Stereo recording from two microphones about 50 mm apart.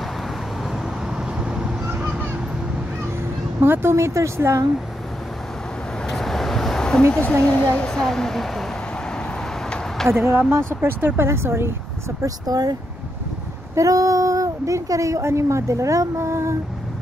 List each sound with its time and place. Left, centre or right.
1.1 s vehicle: centre
3.6 s speech: right
3.9 s speech: right
6.0 s vehicle: centre
7.1 s speech: left
7.9 s speech: centre
10.1 s speech: right
11.2 s speech: right
13.7 s speech: right